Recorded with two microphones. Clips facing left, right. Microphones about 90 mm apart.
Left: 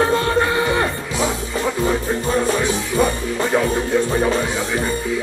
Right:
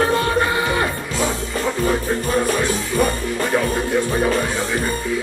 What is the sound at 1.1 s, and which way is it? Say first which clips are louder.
Music: left 1 dB; 20° left (ahead or behind).